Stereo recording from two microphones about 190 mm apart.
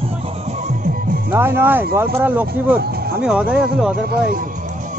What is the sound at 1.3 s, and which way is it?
Speech, 10° right (ahead or behind).